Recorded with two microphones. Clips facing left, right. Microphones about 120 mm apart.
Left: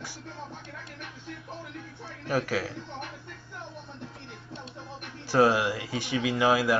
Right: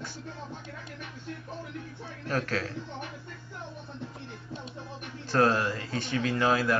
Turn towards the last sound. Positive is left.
turn(degrees=10)  # may be behind; listen again after turning